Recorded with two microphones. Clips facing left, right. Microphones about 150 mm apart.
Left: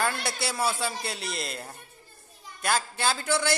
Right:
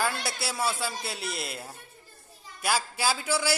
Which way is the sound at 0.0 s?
Centre (ahead or behind).